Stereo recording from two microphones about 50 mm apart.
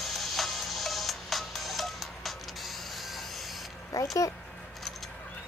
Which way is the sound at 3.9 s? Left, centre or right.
Left.